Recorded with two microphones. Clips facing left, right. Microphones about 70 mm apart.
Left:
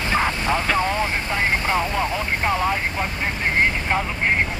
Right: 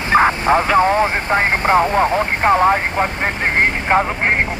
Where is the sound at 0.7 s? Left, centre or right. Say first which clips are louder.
Right 8 dB; right.